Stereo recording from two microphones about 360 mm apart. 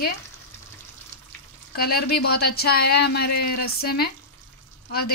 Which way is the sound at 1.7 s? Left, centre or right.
Left.